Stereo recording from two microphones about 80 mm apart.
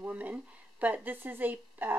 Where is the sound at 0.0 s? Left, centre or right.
Centre.